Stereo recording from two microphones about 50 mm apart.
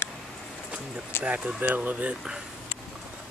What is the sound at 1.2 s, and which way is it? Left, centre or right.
Speech, right.